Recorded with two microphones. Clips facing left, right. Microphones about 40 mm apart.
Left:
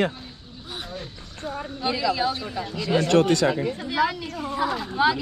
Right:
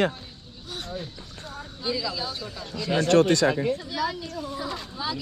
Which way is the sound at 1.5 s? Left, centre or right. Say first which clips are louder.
Left 3 dB; left.